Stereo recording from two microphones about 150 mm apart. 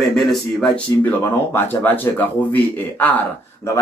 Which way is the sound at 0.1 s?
Centre (ahead or behind).